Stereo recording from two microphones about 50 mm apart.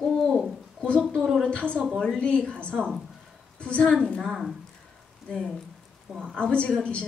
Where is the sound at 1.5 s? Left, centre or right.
Left.